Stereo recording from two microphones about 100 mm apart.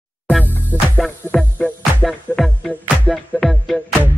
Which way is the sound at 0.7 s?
20° right (ahead or behind).